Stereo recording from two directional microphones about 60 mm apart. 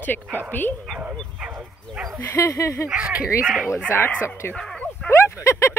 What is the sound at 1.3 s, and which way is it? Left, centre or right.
Bow-wow, centre.